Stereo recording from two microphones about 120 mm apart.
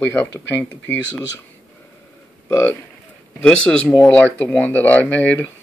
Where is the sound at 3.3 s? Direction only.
10° left (ahead or behind).